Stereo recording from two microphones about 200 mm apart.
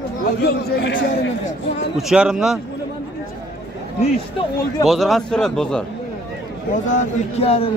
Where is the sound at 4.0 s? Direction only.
25° left (ahead or behind).